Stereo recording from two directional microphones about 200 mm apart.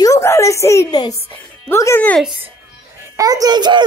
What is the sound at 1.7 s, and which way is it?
Speech, 15° left (ahead or behind).